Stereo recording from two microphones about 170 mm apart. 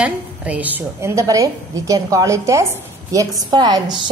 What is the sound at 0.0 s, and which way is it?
A woman's voice, 10° right (ahead or behind).